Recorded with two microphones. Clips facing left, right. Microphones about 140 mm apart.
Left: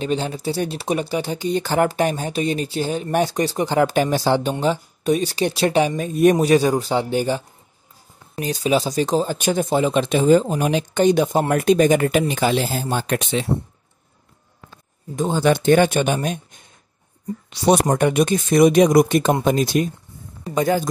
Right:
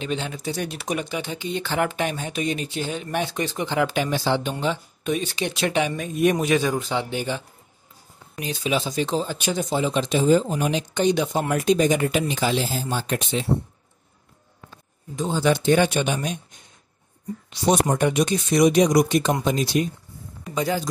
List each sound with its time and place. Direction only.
0.0 s speech: 35° left (ahead or behind); by 12.8 s 50° left (ahead or behind)
12.9 s speech: 70° left (ahead or behind)
15.1 s speech: 50° left (ahead or behind)
17.5 s speech: 70° left (ahead or behind)
17.9 s speech: 55° left (ahead or behind)